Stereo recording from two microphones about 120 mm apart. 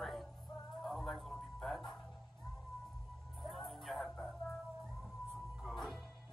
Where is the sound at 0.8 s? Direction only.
Centre (ahead or behind).